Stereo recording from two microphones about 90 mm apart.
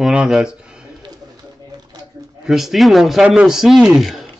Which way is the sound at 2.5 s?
Centre (ahead or behind).